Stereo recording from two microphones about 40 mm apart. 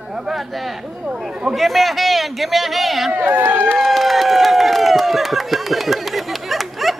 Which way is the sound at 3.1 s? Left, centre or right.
Right.